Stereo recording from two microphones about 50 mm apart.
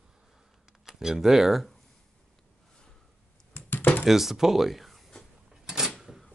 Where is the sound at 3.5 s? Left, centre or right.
Left.